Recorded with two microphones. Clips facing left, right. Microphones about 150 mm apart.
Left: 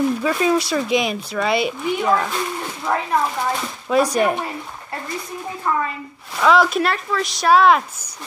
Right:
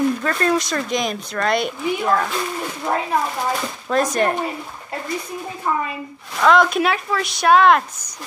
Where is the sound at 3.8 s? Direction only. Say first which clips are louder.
Left 2 dB; 10° left (ahead or behind).